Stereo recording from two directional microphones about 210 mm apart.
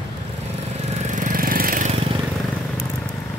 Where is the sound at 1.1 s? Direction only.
40° right (ahead or behind).